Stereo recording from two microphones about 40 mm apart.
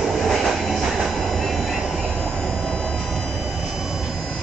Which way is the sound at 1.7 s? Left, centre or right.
Centre.